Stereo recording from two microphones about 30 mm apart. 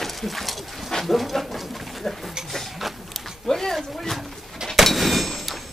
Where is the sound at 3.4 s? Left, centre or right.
Centre.